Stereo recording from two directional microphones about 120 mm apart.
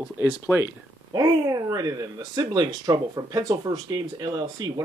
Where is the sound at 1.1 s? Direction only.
30° right (ahead or behind).